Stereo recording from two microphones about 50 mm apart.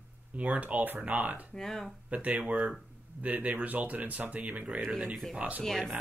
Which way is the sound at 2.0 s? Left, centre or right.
Right.